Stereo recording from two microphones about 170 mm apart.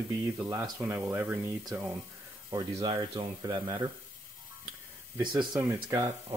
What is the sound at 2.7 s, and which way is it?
Speech, 30° right (ahead or behind).